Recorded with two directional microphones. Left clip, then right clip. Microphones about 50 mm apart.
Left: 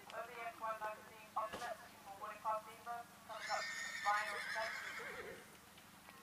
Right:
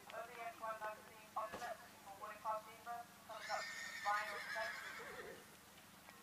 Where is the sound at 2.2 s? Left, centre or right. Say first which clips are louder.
Left 3 dB; centre.